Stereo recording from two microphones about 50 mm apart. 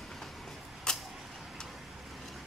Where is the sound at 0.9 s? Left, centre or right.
Centre.